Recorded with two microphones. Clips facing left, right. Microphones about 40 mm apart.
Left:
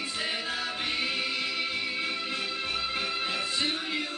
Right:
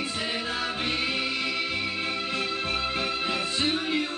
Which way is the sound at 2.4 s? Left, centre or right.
Centre.